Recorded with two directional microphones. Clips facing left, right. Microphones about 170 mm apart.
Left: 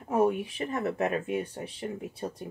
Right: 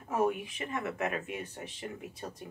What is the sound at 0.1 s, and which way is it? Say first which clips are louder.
Speech: left 5 dB; 35° left (ahead or behind).